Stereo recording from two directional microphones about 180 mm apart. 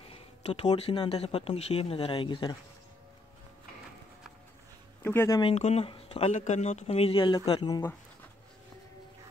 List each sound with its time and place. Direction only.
0.1 s speech: 35° left (ahead or behind)
5.0 s speech: 15° left (ahead or behind)
5.4 s speech: 35° left (ahead or behind)